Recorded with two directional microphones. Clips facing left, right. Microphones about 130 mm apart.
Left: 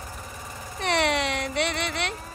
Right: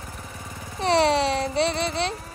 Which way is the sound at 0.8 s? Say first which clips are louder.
Right 5 dB; 30° right (ahead or behind).